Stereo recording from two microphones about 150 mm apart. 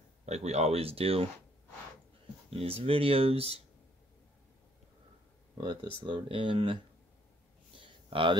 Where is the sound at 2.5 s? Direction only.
40° right (ahead or behind).